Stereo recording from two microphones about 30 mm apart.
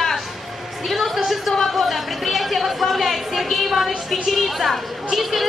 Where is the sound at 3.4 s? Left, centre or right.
Centre.